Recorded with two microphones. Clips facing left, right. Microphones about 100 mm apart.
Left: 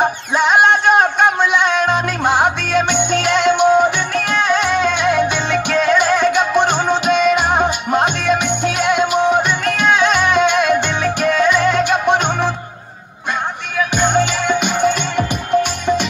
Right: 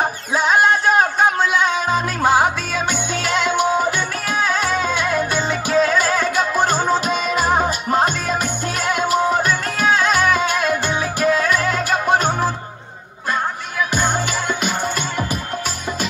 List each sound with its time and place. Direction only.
0.4 s speech: 60° left (ahead or behind)
1.6 s music: 60° left (ahead or behind)
3.1 s music: 60° left (ahead or behind)
6.3 s music: 5° right (ahead or behind)
9.7 s music: 65° left (ahead or behind)
10.0 s music: 5° right (ahead or behind)
13.9 s music: 5° right (ahead or behind)